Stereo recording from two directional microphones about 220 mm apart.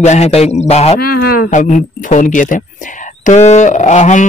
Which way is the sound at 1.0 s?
45° left (ahead or behind).